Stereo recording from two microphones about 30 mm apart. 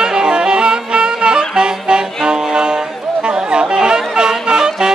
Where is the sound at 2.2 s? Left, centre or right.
Right.